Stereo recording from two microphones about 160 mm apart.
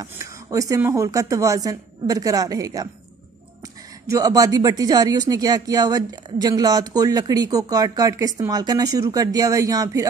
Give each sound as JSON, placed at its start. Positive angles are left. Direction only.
{"t": 0.0, "sound": "speech", "side_deg": -20}
{"t": 4.1, "sound": "speech", "side_deg": -25}